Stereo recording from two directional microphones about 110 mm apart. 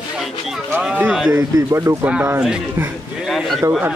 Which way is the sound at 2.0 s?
15° right (ahead or behind).